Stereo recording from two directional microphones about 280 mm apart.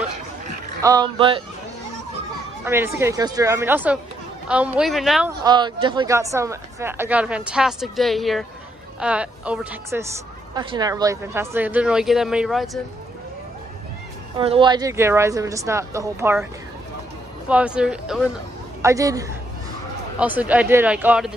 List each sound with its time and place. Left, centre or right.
0.8 s speech: centre
2.6 s speech: centre
5.4 s speech: centre
14.4 s speech: centre
17.5 s speech: centre